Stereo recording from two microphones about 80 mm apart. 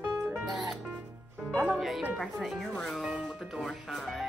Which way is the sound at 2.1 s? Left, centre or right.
Centre.